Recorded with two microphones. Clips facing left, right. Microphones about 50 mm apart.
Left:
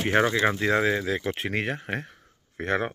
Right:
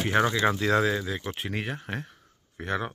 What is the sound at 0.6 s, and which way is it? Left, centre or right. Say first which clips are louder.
Speech: left 1 dB; left.